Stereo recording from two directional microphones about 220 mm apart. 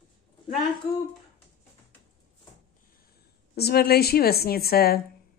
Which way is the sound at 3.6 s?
45° left (ahead or behind).